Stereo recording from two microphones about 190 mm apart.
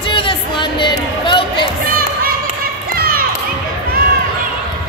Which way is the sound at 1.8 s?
50° right (ahead or behind).